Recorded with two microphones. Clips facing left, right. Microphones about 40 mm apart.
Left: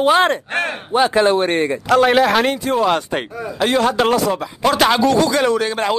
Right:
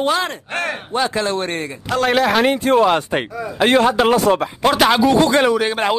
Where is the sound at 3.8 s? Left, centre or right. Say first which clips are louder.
Left 1 dB; centre.